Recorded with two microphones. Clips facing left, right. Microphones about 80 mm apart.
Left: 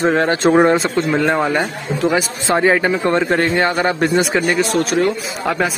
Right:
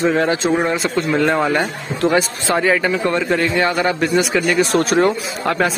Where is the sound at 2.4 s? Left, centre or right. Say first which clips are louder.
Left 2 dB; left.